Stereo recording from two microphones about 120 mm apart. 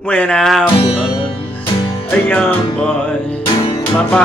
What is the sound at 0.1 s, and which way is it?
Music, 10° left (ahead or behind).